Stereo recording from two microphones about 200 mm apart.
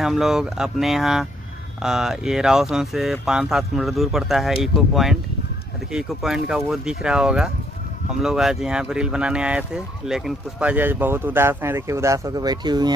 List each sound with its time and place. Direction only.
0.0 s speech: centre (ahead or behind); by 12.9 s 20° right (ahead or behind)